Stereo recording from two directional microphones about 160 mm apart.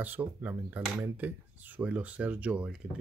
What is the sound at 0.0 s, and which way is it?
Speech, 10° right (ahead or behind).